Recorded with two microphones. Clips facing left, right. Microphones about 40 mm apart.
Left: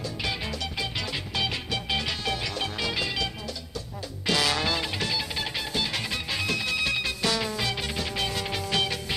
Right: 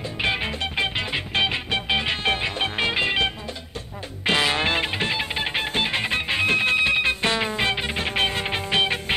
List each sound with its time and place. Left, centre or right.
0.2 s music: right